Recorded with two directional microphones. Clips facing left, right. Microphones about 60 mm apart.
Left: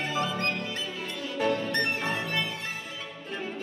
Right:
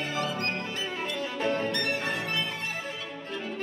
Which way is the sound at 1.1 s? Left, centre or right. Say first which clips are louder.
Left 2 dB; right.